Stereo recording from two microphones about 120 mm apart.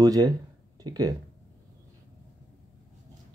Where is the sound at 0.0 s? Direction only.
30° right (ahead or behind).